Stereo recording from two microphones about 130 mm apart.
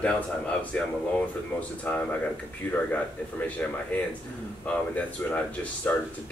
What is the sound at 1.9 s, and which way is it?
Speech, 15° left (ahead or behind).